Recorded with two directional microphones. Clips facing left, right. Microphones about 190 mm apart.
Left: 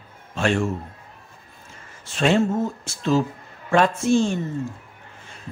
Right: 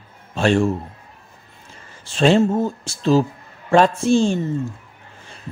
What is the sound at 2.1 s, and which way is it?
A man's voice, 30° right (ahead or behind).